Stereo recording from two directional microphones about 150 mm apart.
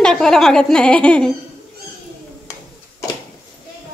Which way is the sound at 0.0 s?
5° left (ahead or behind).